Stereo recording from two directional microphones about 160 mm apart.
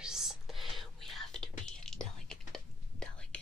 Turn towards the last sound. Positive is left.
turn(degrees=5)  # may be behind; listen again after turning